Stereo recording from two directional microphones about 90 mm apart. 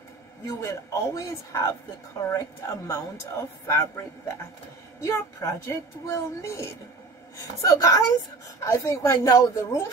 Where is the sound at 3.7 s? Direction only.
30° left (ahead or behind).